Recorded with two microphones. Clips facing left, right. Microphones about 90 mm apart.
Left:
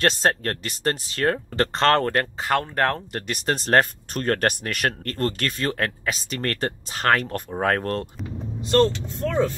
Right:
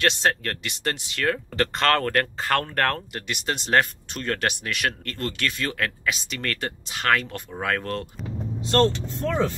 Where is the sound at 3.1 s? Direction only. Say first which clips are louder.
Left 3 dB; 40° left (ahead or behind).